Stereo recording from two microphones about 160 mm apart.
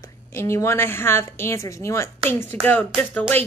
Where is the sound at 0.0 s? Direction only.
15° left (ahead or behind).